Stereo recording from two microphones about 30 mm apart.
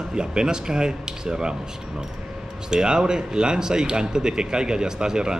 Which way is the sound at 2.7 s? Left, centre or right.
Right.